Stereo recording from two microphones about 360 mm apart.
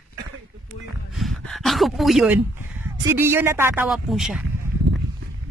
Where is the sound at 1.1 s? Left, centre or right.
Centre.